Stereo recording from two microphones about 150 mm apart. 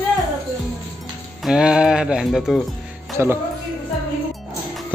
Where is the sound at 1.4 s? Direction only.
5° right (ahead or behind).